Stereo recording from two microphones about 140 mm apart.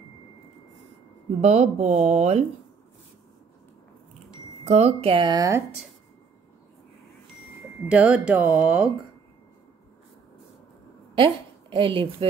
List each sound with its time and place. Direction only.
1.4 s speech: 50° right (ahead or behind)
4.6 s speech: 50° right (ahead or behind); by 5.6 s 30° right (ahead or behind)
7.9 s speech: 10° right (ahead or behind)
11.1 s a woman's voice: 35° right (ahead or behind)